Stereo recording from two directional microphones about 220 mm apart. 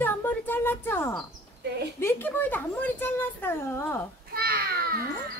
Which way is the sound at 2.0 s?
10° left (ahead or behind).